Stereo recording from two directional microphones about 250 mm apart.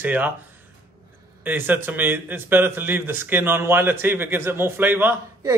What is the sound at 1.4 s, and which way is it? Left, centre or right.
A man's voice, centre.